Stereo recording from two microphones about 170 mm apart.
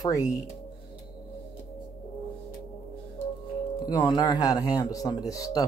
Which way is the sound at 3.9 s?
25° left (ahead or behind).